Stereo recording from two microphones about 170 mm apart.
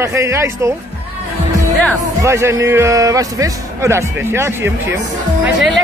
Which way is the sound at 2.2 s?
15° right (ahead or behind).